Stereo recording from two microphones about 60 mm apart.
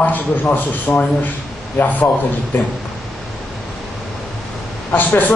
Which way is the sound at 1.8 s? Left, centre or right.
Left.